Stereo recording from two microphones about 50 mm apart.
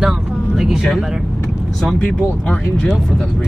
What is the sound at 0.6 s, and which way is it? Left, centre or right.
Speech, centre.